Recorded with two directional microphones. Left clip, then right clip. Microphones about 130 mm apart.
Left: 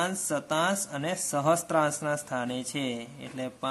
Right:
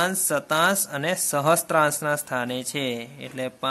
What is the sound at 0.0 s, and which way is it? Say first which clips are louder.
Speech: right 6 dB; 30° right (ahead or behind).